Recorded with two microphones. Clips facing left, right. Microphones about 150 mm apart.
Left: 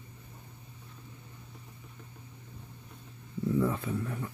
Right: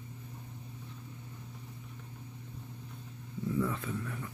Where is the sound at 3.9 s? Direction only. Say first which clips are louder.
Left 4 dB; 35° left (ahead or behind).